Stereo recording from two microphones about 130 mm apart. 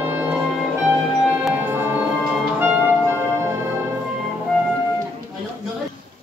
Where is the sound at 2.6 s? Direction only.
15° right (ahead or behind).